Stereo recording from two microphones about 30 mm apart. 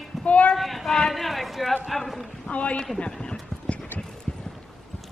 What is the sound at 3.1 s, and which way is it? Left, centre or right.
Clip-clop, left.